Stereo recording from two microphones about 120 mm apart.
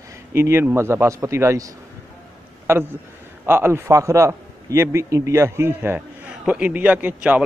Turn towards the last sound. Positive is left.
turn(degrees=-15)  # may be behind; listen again after turning